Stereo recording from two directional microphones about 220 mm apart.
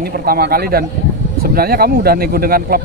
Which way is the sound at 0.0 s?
45° right (ahead or behind).